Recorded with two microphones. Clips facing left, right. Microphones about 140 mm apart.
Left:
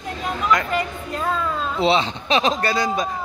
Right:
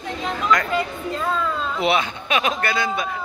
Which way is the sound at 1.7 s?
25° left (ahead or behind).